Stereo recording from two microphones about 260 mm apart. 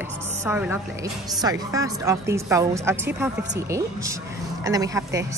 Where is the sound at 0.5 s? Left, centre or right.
Centre.